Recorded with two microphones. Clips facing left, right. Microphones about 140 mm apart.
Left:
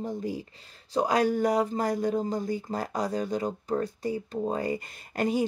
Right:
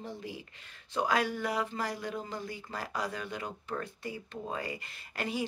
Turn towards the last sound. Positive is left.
turn(degrees=45)  # may be behind; listen again after turning